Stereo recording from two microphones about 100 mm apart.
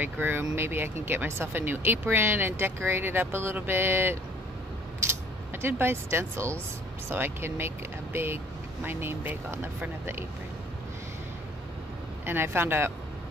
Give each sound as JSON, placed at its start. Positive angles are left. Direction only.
{"t": 0.0, "sound": "speech", "side_deg": -20}
{"t": 5.5, "sound": "speech", "side_deg": -25}
{"t": 12.3, "sound": "speech", "side_deg": -20}